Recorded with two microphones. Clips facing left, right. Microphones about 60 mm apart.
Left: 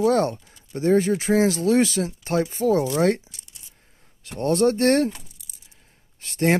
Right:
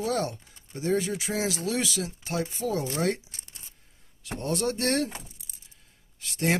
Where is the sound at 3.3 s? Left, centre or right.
Right.